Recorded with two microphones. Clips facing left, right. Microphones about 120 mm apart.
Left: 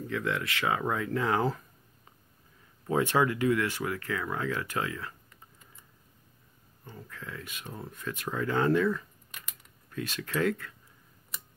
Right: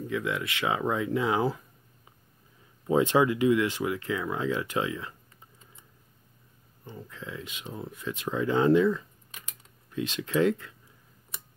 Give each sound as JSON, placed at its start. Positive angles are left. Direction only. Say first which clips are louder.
{"t": 0.0, "sound": "speech", "louder": "right 1 dB", "side_deg": -15}
{"t": 2.9, "sound": "speech", "louder": "right 3 dB", "side_deg": -20}
{"t": 6.9, "sound": "speech", "louder": "right 3 dB", "side_deg": -20}